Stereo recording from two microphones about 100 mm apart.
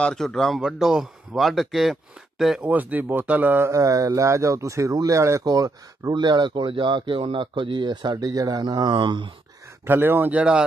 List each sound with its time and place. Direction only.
0.0 s speech: 5° left (ahead or behind)
0.6 s speech: 5° right (ahead or behind)
2.7 s speech: 15° right (ahead or behind)
3.7 s speech: 35° right (ahead or behind); by 9.3 s 55° right (ahead or behind)
9.8 s speech: 20° right (ahead or behind)